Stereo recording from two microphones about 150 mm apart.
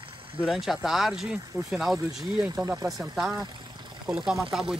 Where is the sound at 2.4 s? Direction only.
20° right (ahead or behind).